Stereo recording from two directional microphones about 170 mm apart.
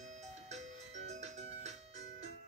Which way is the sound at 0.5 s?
40° right (ahead or behind).